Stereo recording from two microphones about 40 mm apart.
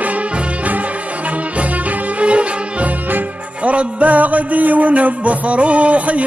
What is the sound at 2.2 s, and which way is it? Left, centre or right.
Violin, right.